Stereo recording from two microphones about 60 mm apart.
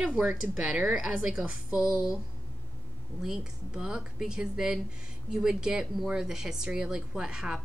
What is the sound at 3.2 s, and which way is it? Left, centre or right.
A woman's voice, centre.